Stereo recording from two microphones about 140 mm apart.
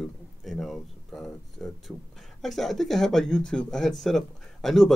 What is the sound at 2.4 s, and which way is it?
Speech, centre (ahead or behind).